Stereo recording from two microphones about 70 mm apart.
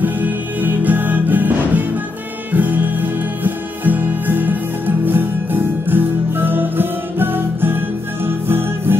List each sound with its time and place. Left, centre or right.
0.0 s music: right